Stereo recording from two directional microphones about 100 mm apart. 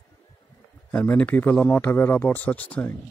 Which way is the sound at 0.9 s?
10° left (ahead or behind).